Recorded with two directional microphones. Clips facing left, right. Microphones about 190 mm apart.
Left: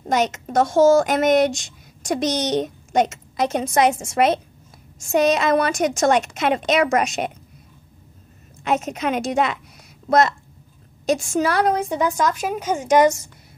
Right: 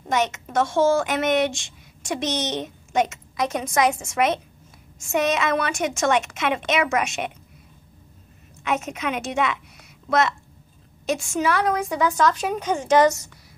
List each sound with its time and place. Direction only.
0.1 s a woman's voice: 35° left (ahead or behind)
8.6 s a woman's voice: 35° left (ahead or behind)
12.1 s a woman's voice: 10° left (ahead or behind)